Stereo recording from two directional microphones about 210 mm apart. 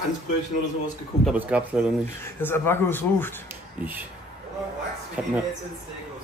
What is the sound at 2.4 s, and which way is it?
Speech, 10° left (ahead or behind).